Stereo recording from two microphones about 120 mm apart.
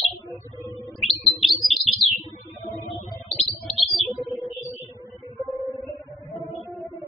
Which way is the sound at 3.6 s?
Centre (ahead or behind).